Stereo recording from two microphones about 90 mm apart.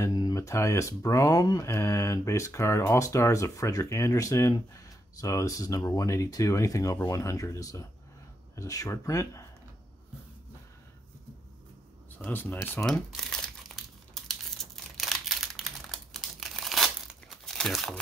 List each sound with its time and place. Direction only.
0.1 s a sound: 50° left (ahead or behind)
0.4 s speech: 30° left (ahead or behind)
12.2 s speech: 20° left (ahead or behind)
12.8 s crumpling: 5° left (ahead or behind)